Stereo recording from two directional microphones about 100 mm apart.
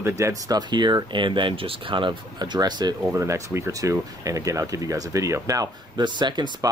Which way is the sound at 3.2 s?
30° right (ahead or behind).